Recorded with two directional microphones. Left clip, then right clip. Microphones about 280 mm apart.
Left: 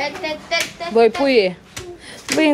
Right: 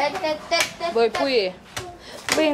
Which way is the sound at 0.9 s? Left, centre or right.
Centre.